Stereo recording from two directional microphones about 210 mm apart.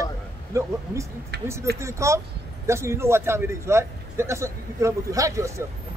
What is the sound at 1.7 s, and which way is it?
Speech, 15° right (ahead or behind).